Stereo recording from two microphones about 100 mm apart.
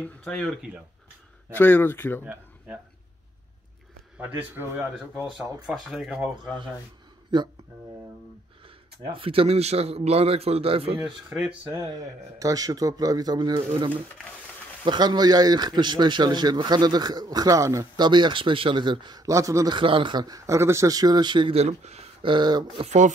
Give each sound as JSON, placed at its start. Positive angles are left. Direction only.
{"t": 0.2, "sound": "speech", "side_deg": 5}
{"t": 1.5, "sound": "speech", "side_deg": 20}
{"t": 4.2, "sound": "speech", "side_deg": -20}
{"t": 5.9, "sound": "speech", "side_deg": -5}
{"t": 7.3, "sound": "speech", "side_deg": -50}
{"t": 9.1, "sound": "a man's voice", "side_deg": -65}
{"t": 11.3, "sound": "speech", "side_deg": -10}
{"t": 11.7, "sound": "a man's voice", "side_deg": -35}
{"t": 14.9, "sound": "speech", "side_deg": -45}
{"t": 18.0, "sound": "speech", "side_deg": -50}
{"t": 19.2, "sound": "a man's voice", "side_deg": -30}
{"t": 19.7, "sound": "a man's voice", "side_deg": -55}
{"t": 21.5, "sound": "speech", "side_deg": -90}
{"t": 22.3, "sound": "speech", "side_deg": -45}